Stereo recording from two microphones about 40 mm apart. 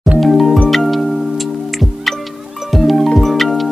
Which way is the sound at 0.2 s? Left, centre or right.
Centre.